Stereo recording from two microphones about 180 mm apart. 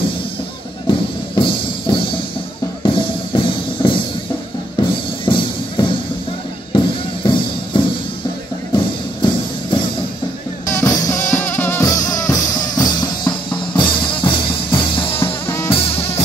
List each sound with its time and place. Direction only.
0.8 s music: 25° left (ahead or behind)
10.7 s drum kit: 15° left (ahead or behind)
15.4 s drum kit: 15° left (ahead or behind)